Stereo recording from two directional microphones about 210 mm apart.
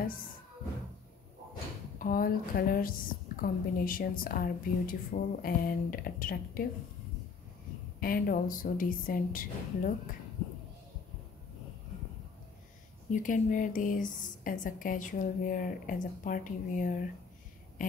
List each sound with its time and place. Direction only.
2.0 s a woman's voice: 40° left (ahead or behind)
8.0 s a woman's voice: 40° left (ahead or behind)
13.1 s a woman's voice: 40° left (ahead or behind)